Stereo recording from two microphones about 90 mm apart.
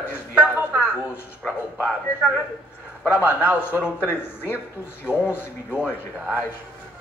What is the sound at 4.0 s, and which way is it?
Speech, 20° left (ahead or behind).